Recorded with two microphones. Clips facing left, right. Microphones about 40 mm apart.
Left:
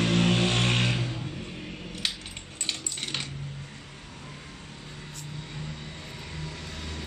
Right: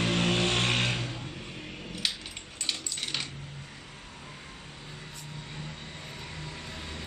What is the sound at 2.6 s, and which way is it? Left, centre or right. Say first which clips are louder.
Coin: left 1 dB; centre.